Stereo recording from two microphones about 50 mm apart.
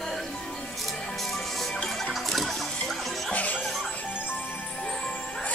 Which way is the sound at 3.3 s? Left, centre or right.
Left.